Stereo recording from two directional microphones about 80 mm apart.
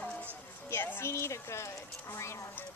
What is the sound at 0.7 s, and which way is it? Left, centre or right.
Speech, left.